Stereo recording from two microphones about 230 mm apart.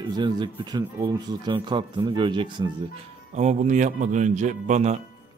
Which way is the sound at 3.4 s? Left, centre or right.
Right.